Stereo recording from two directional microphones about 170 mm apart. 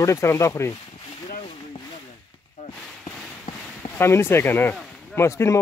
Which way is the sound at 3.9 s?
15° left (ahead or behind).